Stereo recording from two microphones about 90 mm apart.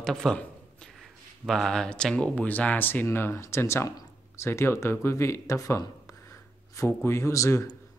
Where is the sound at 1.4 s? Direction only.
5° left (ahead or behind).